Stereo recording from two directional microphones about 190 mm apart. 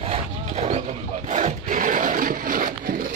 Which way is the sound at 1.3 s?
40° right (ahead or behind).